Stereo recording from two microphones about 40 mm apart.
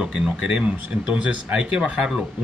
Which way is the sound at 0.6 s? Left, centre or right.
Right.